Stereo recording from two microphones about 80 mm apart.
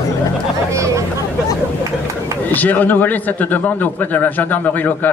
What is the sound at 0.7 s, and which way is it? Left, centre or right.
Speech, right.